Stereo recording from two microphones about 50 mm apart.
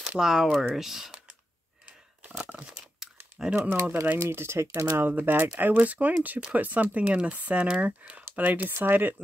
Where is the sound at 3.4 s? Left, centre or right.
Centre.